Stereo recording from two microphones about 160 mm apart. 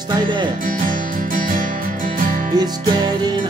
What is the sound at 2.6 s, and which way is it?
Music, 25° right (ahead or behind).